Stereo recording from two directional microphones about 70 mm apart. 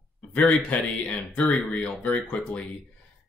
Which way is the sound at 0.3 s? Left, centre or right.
Left.